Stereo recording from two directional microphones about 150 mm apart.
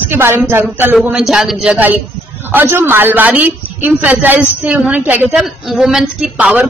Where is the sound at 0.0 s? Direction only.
15° right (ahead or behind).